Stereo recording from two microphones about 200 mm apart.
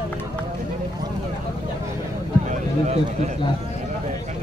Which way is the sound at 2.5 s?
35° right (ahead or behind).